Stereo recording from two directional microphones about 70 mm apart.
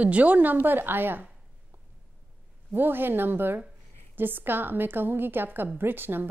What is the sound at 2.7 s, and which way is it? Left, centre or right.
A woman's voice, right.